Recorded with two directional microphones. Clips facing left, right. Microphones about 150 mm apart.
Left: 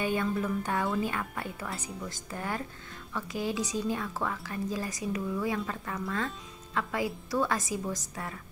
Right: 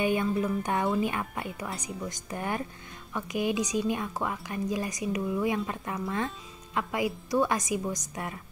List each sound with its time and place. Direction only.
0.0 s a woman's voice: 15° right (ahead or behind)